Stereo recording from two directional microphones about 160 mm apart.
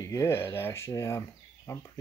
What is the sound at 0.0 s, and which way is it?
Speech, 20° left (ahead or behind).